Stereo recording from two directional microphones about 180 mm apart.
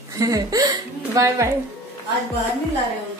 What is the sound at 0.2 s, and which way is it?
A woman's voice, 20° right (ahead or behind).